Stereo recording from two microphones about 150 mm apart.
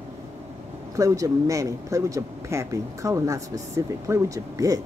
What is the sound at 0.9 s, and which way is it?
Speech, 20° right (ahead or behind).